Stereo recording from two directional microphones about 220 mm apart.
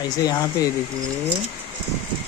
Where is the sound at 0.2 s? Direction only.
15° left (ahead or behind).